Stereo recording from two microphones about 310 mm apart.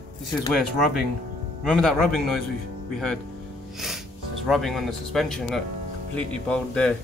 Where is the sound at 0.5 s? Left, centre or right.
Centre.